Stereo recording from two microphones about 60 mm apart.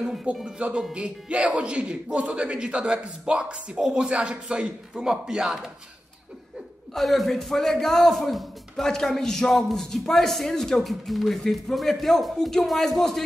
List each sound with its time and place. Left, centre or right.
0.1 s speech: centre
6.9 s a man's voice: centre